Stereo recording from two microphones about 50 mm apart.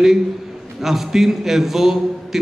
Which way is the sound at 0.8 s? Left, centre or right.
Centre.